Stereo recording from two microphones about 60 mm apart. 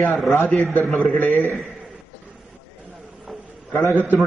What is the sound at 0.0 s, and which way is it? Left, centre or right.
A man's voice, centre.